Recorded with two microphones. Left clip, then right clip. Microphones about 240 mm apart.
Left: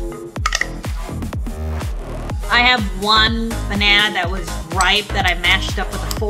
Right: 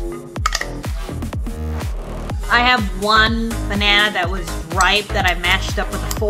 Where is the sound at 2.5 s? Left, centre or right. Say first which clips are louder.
Even; centre.